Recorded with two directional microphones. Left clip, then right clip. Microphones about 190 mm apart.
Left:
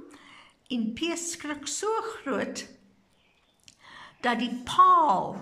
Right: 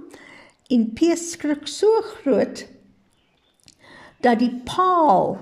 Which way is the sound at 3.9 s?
30° right (ahead or behind).